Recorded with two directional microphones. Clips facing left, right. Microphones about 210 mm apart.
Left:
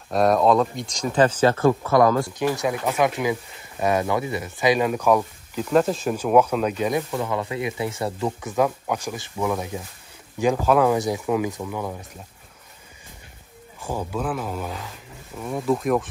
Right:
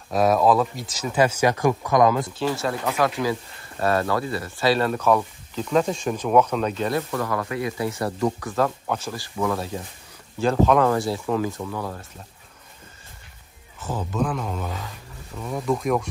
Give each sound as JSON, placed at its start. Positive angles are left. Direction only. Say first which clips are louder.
{"t": 0.1, "sound": "speech", "louder": "left 1 dB", "side_deg": 0}
{"t": 2.3, "sound": "speech", "louder": "left 2 dB", "side_deg": 15}
{"t": 13.7, "sound": "speech", "louder": "right 1 dB", "side_deg": 10}